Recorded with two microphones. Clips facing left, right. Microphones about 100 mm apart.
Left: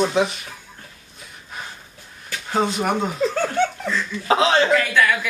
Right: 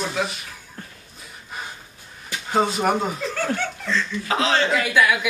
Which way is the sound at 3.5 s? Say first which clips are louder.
Left 4 dB; 15° left (ahead or behind).